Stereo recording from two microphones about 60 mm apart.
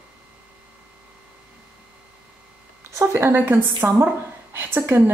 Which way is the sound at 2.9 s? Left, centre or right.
Right.